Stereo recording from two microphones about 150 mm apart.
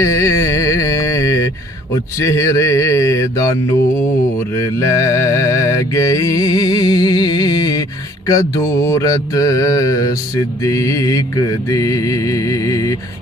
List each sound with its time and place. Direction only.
0.0 s music: 20° left (ahead or behind)
2.1 s mantra: 20° left (ahead or behind)